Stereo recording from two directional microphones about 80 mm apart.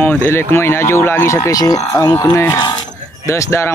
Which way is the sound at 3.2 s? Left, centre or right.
Left.